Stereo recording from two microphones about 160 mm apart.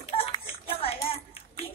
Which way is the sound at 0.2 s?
35° left (ahead or behind).